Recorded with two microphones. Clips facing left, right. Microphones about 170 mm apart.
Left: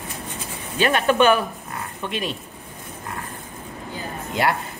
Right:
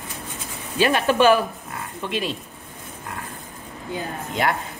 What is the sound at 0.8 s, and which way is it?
Speech, 5° right (ahead or behind).